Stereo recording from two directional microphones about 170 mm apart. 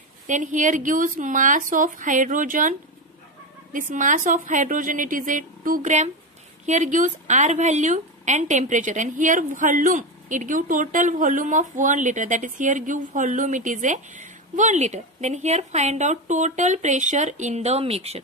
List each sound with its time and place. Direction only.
0.3 s a woman's voice: 50° right (ahead or behind)
3.7 s a woman's voice: 50° right (ahead or behind)